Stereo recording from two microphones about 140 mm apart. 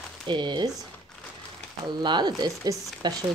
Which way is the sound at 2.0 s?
30° right (ahead or behind).